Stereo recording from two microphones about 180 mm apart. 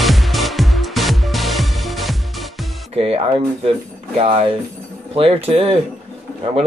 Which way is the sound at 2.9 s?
30° right (ahead or behind).